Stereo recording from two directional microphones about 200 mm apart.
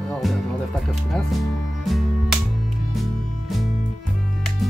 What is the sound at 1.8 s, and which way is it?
Music, centre (ahead or behind).